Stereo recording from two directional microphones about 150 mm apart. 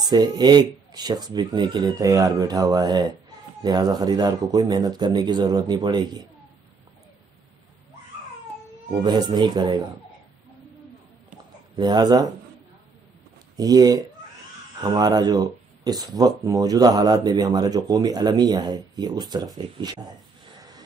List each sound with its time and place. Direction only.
0.0 s speech: 30° right (ahead or behind)
8.9 s speech: 30° right (ahead or behind)
11.7 s speech: 30° right (ahead or behind)
13.6 s speech: 25° right (ahead or behind)